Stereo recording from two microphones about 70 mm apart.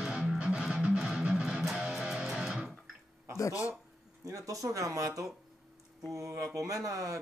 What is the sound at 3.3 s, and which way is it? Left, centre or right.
Speech, left.